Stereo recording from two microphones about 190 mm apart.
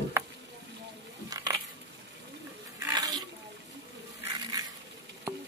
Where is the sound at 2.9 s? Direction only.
20° right (ahead or behind).